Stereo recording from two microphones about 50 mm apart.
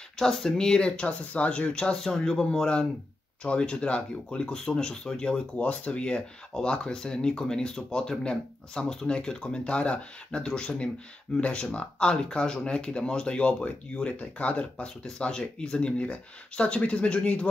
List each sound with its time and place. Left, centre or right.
0.2 s speech: centre